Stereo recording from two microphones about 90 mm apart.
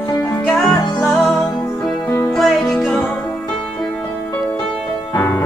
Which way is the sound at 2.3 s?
Centre (ahead or behind).